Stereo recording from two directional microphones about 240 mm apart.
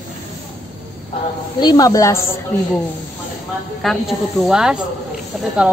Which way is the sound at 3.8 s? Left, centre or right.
Centre.